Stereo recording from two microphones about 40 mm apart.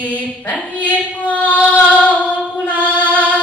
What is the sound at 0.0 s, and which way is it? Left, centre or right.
Female singing, left.